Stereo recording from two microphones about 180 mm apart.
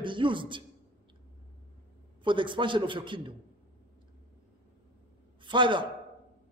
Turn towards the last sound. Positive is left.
turn(degrees=-25)  # may be behind; listen again after turning